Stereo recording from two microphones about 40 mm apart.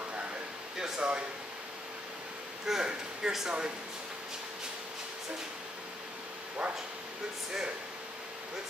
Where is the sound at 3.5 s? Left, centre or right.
Right.